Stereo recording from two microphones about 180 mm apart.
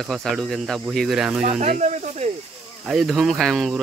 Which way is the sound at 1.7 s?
40° right (ahead or behind).